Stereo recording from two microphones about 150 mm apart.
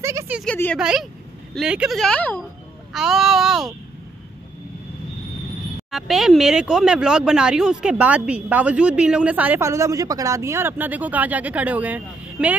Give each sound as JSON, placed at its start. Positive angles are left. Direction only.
{"t": 0.0, "sound": "a sound", "side_deg": -20}
{"t": 0.5, "sound": "speech", "side_deg": 10}
{"t": 0.7, "sound": "speech", "side_deg": -5}
{"t": 2.9, "sound": "speech", "side_deg": 0}
{"t": 5.9, "sound": "speech", "side_deg": 0}